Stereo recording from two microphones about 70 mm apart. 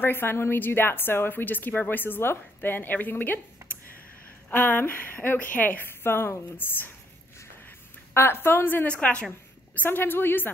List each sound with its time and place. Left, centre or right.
0.0 s a woman's voice: left
4.5 s a woman's voice: left
7.6 s a sound: left
8.8 s a woman's voice: centre
9.8 s a woman's voice: left